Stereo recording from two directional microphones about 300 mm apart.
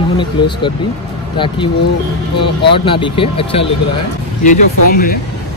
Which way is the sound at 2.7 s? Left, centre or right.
Centre.